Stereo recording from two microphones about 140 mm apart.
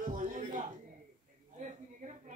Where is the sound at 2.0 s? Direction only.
60° right (ahead or behind).